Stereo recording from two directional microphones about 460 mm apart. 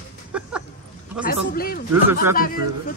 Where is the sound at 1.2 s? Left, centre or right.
Centre.